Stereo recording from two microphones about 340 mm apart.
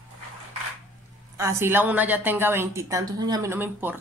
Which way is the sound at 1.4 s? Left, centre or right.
Centre.